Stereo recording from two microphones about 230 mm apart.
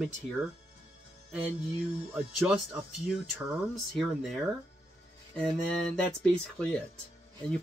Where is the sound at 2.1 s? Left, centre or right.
Centre.